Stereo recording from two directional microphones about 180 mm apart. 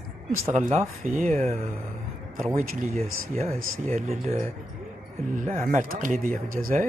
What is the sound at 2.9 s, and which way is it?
Speech, 35° right (ahead or behind).